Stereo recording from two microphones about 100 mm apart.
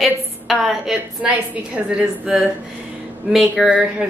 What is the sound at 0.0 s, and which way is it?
A woman's voice, centre (ahead or behind).